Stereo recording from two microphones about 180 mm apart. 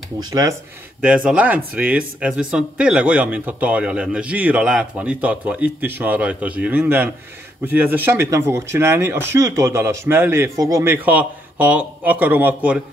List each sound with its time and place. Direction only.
0.2 s speech: 20° right (ahead or behind)
1.0 s a man's voice: 5° right (ahead or behind)